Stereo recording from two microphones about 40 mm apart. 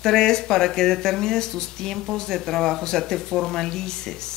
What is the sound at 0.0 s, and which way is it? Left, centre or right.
Speech, centre.